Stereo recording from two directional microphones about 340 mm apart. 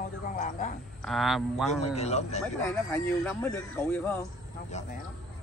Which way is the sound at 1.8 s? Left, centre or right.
Centre.